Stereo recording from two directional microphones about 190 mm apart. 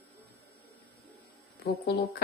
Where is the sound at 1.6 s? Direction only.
55° left (ahead or behind).